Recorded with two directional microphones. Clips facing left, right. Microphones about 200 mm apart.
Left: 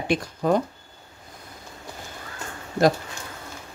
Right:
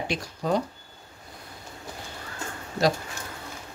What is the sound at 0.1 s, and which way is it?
Speech, 55° left (ahead or behind).